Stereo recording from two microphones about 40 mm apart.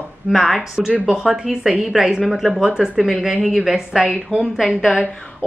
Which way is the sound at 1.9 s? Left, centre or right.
Centre.